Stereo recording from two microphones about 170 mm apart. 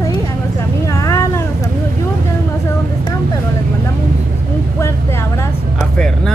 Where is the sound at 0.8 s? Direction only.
20° left (ahead or behind).